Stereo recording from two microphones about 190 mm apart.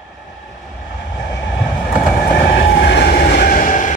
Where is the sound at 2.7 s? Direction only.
60° left (ahead or behind); by 3.9 s 40° left (ahead or behind).